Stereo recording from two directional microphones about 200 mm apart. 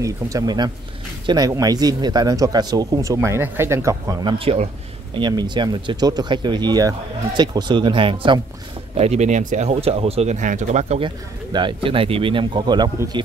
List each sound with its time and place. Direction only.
0.0 s speech: 15° right (ahead or behind)